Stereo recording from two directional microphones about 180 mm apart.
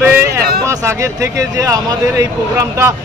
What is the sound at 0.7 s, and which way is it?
Speech, 15° right (ahead or behind).